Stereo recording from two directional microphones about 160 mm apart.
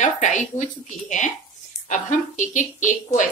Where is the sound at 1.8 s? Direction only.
55° left (ahead or behind).